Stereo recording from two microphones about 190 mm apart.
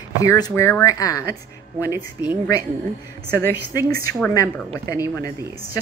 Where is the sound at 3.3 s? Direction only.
15° left (ahead or behind).